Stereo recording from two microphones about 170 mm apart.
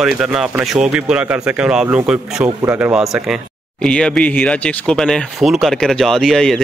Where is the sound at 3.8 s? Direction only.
5° left (ahead or behind).